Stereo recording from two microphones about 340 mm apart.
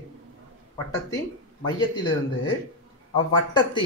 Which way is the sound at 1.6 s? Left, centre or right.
Centre.